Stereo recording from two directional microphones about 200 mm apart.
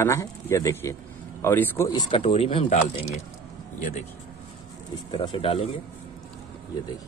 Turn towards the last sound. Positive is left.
turn(degrees=30)  # may be behind; listen again after turning